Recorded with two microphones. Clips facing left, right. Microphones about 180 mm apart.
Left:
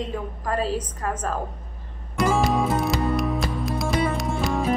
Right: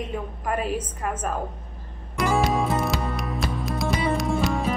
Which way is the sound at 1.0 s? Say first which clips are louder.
Left 1 dB; 15° right (ahead or behind).